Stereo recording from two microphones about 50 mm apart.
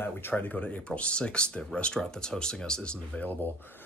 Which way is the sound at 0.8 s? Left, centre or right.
Left.